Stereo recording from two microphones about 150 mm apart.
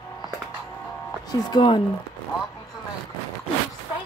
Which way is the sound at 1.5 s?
30° left (ahead or behind).